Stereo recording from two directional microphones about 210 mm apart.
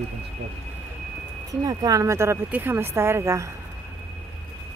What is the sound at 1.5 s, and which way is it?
Speech, 15° right (ahead or behind).